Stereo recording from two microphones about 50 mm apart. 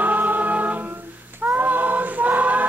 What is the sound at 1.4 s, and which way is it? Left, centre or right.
Choir, right.